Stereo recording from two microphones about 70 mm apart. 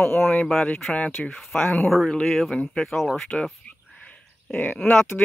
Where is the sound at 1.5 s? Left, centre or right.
Centre.